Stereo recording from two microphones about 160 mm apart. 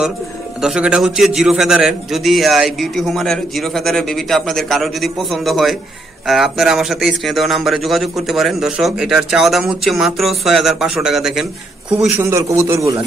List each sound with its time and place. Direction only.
0.6 s a man's voice: 5° right (ahead or behind)
12.2 s a man's voice: 15° right (ahead or behind)